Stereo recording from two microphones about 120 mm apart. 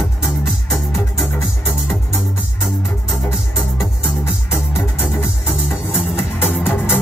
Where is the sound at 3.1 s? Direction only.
25° left (ahead or behind).